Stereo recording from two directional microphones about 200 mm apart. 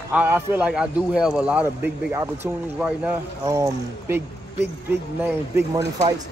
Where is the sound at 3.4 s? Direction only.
15° right (ahead or behind).